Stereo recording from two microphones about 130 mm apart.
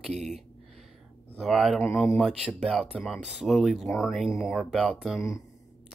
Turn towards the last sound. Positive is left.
turn(degrees=0)  # may be behind; listen again after turning